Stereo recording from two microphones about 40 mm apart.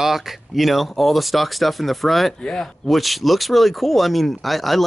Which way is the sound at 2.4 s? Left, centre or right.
Left.